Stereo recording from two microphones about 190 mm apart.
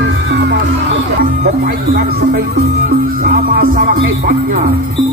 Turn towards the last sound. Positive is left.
turn(degrees=-50)  # may be behind; listen again after turning